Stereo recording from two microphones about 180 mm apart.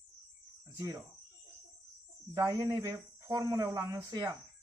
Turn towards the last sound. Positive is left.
turn(degrees=-20)  # may be behind; listen again after turning